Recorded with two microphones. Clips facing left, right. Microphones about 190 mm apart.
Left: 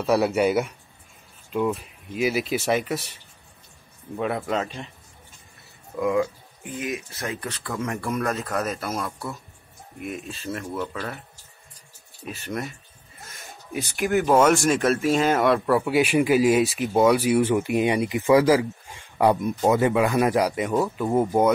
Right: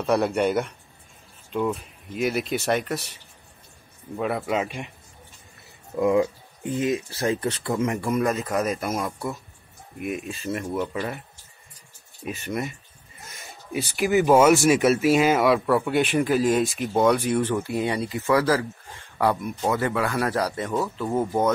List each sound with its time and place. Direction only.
0.0 s speech: 5° left (ahead or behind)
4.2 s speech: 5° right (ahead or behind)
5.9 s speech: 25° right (ahead or behind)
8.1 s speech: 10° right (ahead or behind)
12.4 s speech: 5° right (ahead or behind); by 21.5 s 15° left (ahead or behind)